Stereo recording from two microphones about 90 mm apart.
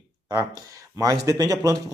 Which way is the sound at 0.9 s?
40° right (ahead or behind).